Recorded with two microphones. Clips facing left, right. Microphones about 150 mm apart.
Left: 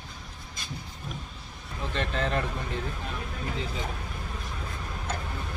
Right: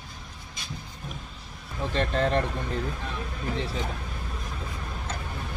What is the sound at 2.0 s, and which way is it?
Speech, 40° right (ahead or behind).